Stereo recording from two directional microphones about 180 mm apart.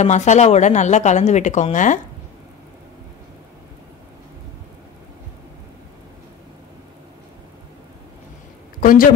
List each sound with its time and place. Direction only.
0.0 s speech: 40° left (ahead or behind)
8.8 s a woman's voice: 50° left (ahead or behind)